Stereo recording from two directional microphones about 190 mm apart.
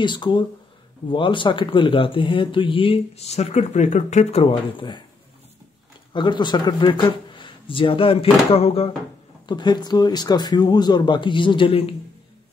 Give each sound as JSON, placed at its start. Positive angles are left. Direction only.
{"t": 0.0, "sound": "speech", "side_deg": 25}
{"t": 6.1, "sound": "speech", "side_deg": 25}